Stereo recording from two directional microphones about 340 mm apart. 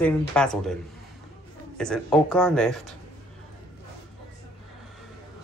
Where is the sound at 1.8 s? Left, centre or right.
Centre.